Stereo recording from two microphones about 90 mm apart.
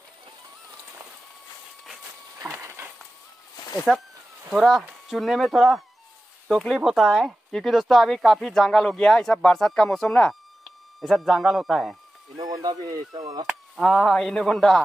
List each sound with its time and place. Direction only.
2.3 s a sound: 35° right (ahead or behind)
3.9 s speech: centre (ahead or behind)
12.6 s speech: 50° right (ahead or behind)
13.7 s speech: centre (ahead or behind)